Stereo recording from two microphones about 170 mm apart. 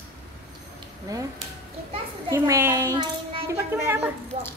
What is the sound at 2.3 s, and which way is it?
Speech, 15° right (ahead or behind).